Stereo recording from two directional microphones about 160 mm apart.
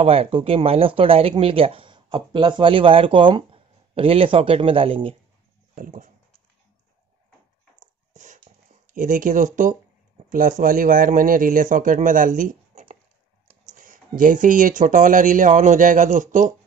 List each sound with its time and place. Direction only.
0.0 s speech: 40° right (ahead or behind)
5.8 s speech: 55° right (ahead or behind)
7.8 s a sound: 50° right (ahead or behind)
8.8 s speech: 55° right (ahead or behind)